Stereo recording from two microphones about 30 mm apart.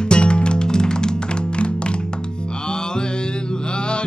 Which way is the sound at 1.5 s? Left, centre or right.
Left.